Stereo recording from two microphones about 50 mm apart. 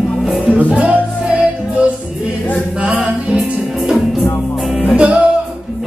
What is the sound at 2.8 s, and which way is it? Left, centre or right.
Music, centre.